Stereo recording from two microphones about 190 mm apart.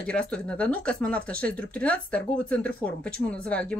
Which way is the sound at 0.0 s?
5° left (ahead or behind).